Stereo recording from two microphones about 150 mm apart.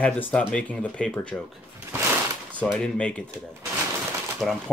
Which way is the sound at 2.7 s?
5° left (ahead or behind).